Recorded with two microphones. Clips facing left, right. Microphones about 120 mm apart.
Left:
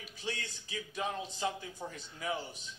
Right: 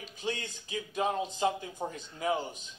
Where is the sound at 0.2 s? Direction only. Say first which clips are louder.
Right 5 dB; 15° right (ahead or behind).